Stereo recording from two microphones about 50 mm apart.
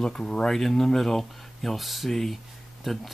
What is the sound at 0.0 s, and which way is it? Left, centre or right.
Speech, centre.